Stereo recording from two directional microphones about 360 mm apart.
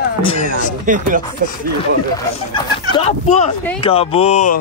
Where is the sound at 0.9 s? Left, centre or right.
Right.